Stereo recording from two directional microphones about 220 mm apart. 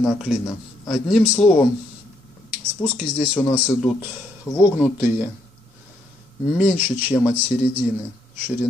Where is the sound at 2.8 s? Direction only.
5° left (ahead or behind).